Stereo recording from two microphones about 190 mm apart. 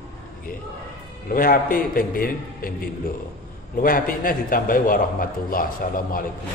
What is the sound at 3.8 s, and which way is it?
A man's voice, 45° left (ahead or behind).